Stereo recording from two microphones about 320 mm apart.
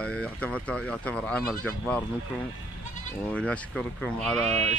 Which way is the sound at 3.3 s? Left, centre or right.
Centre.